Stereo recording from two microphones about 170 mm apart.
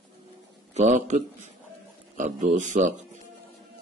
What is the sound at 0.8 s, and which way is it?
A man's voice, 45° right (ahead or behind).